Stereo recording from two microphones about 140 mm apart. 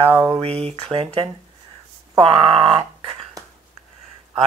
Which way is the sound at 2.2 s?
45° right (ahead or behind).